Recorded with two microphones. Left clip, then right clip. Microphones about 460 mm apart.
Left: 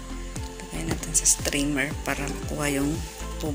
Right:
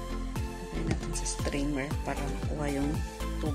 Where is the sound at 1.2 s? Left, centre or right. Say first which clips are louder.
Left 11 dB; right.